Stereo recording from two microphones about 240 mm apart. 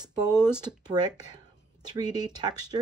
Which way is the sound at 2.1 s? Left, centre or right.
Centre.